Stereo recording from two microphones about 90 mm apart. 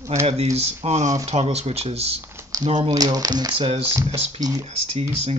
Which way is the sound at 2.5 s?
45° right (ahead or behind).